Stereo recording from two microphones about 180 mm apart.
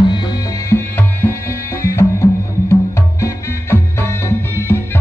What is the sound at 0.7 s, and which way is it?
Music, 10° left (ahead or behind).